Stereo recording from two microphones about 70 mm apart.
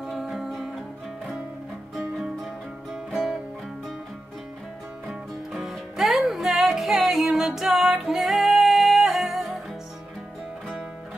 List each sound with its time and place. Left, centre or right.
0.0 s music: centre
5.0 s music: centre